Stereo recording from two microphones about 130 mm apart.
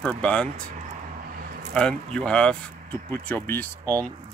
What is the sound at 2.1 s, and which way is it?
Speech, 10° left (ahead or behind).